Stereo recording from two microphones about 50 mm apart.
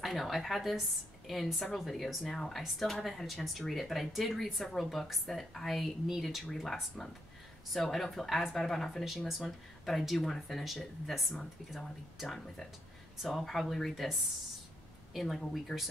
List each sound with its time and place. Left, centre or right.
0.0 s a woman's voice: centre
5.8 s speech: centre
6.4 s speech: centre
15.1 s speech: centre